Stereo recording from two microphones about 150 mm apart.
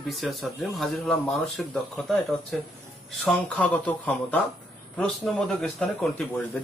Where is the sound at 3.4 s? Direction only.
10° left (ahead or behind).